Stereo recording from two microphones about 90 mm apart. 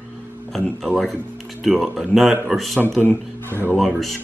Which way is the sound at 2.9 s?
20° left (ahead or behind).